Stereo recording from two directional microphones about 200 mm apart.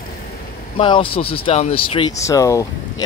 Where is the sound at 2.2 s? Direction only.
15° left (ahead or behind).